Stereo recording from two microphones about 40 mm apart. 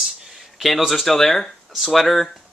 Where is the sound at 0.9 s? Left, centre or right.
Centre.